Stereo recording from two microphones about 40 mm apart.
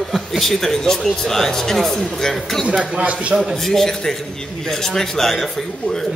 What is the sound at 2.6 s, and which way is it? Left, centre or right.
Speech, right.